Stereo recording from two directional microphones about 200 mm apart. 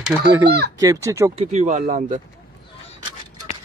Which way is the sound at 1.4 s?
35° right (ahead or behind).